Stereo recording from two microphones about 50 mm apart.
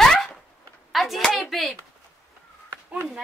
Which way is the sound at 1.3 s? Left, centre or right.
Centre.